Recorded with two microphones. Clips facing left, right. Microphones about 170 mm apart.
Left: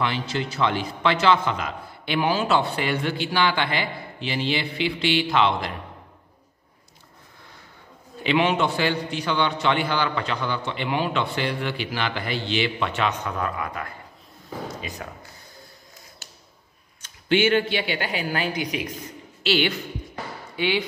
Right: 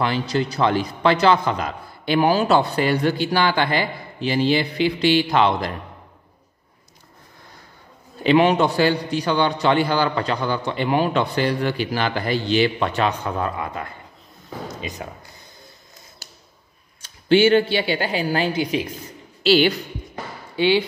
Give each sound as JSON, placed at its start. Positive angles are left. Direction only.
{"t": 0.0, "sound": "a man's voice", "side_deg": -40}
{"t": 8.2, "sound": "a man's voice", "side_deg": -40}
{"t": 16.2, "sound": "a sound", "side_deg": -40}
{"t": 17.0, "sound": "a man's voice", "side_deg": -30}